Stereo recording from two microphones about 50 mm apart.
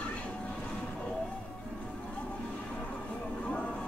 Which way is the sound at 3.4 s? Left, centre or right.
Left.